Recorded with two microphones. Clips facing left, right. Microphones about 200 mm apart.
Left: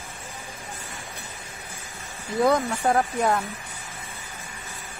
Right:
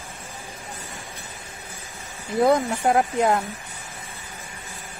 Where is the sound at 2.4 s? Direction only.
20° right (ahead or behind).